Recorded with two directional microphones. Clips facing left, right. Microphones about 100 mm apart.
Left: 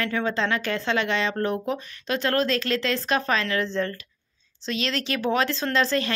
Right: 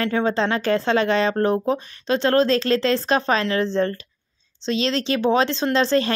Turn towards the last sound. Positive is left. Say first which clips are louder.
# right 5 dB
turn(degrees=-30)  # may be behind; listen again after turning